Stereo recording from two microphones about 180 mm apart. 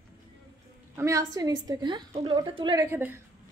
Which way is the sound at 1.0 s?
15° right (ahead or behind).